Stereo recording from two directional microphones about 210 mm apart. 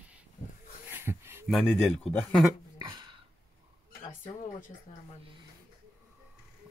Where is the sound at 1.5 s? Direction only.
Centre (ahead or behind).